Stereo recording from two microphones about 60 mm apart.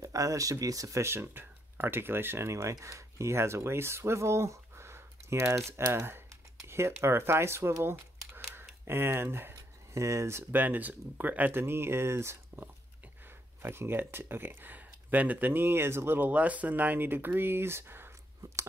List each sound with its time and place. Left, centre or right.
0.0 s speech: right
1.0 s speech: right
7.8 s a sound: right
8.5 s speech: right
9.9 s speech: right
10.5 s speech: right
11.6 s speech: right
13.6 s speech: right